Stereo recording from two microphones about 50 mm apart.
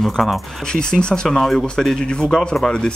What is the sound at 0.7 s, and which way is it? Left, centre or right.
Speech, centre.